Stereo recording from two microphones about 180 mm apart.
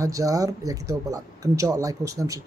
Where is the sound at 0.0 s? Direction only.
20° right (ahead or behind).